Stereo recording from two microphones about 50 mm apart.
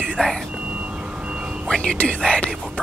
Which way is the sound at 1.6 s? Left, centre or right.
Centre.